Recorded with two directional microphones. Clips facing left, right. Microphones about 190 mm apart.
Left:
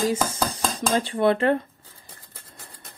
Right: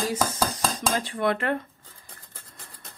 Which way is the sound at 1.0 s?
30° left (ahead or behind).